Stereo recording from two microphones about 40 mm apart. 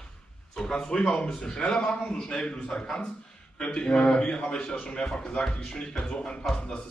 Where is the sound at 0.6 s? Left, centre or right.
Centre.